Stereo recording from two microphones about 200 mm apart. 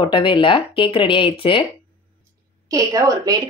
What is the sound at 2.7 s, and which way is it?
Speech, 20° right (ahead or behind).